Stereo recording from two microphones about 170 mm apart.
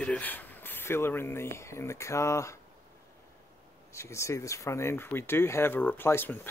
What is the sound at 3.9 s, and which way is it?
Speech, 15° left (ahead or behind).